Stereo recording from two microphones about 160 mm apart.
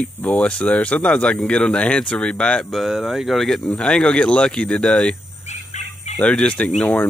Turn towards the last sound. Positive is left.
turn(degrees=10)  # may be behind; listen again after turning